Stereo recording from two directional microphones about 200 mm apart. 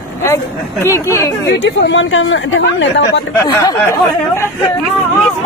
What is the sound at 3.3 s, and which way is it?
Speech, 15° left (ahead or behind).